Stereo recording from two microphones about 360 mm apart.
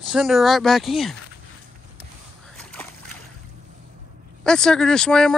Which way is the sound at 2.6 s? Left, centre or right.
Centre.